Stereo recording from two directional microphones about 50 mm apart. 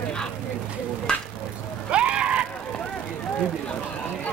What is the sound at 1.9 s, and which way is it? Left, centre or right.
Screaming, right.